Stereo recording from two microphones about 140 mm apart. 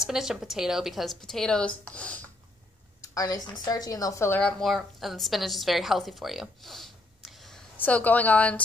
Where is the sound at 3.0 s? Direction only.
25° left (ahead or behind).